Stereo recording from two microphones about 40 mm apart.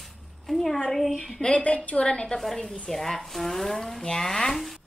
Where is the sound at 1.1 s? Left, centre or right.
Left.